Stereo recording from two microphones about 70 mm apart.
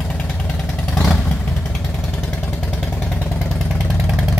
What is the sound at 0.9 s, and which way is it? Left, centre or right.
Vehicle, centre.